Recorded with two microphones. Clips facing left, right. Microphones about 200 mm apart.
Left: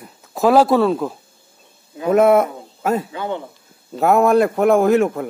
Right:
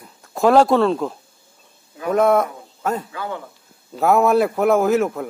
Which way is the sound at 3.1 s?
25° left (ahead or behind).